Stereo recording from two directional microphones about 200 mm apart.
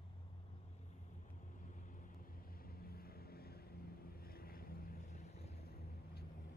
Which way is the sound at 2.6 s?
50° left (ahead or behind).